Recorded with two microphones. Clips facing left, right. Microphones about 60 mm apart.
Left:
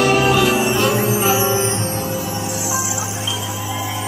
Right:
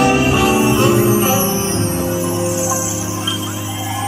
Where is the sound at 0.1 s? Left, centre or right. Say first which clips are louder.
Right 1 dB; right.